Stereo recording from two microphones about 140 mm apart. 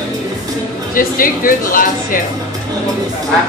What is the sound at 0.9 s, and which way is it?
Speech, 85° left.